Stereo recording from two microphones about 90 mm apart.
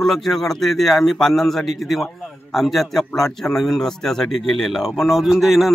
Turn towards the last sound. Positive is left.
turn(degrees=0)  # may be behind; listen again after turning